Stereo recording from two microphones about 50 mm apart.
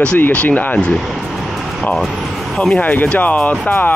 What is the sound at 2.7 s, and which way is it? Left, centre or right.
Speech, left.